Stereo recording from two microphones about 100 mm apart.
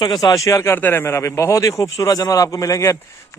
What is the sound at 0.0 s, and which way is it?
A man's voice, 40° left (ahead or behind).